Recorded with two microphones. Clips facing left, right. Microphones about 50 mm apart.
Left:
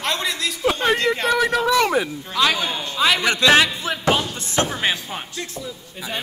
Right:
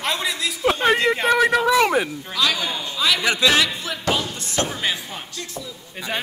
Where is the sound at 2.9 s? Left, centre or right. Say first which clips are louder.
Left 3 dB; left.